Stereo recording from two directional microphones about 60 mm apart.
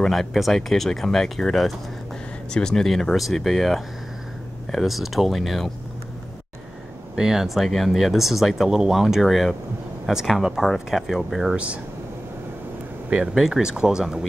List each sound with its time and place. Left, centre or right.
0.0 s speech: centre
7.2 s speech: centre
11.5 s speech: right
13.3 s speech: centre